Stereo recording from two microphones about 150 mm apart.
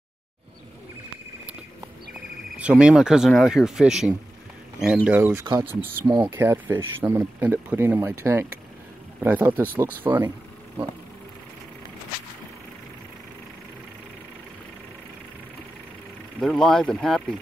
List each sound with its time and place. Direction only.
2.5 s speech: 5° right (ahead or behind)
5.4 s speech: 30° right (ahead or behind)
6.3 s speech: 15° right (ahead or behind)
16.3 s speech: 5° left (ahead or behind)